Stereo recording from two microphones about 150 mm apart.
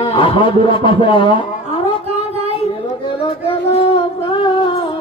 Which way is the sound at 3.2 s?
40° left (ahead or behind).